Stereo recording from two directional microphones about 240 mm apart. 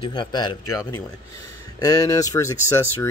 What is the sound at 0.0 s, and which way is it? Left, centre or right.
Speech, centre.